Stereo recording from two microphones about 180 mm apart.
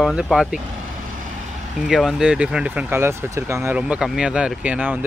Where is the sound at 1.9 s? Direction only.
5° right (ahead or behind).